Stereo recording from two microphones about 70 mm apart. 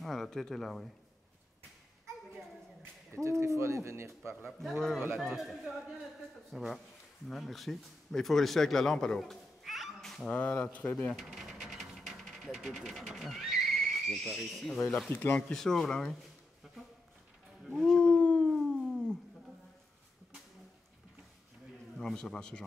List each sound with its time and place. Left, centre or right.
0.0 s speech: centre
3.1 s speech: right
4.5 s speech: centre
11.1 s a sound: centre
14.2 s speech: centre
16.6 s a sound: centre
17.6 s wild animals: centre
17.9 s howl: centre
21.9 s speech: centre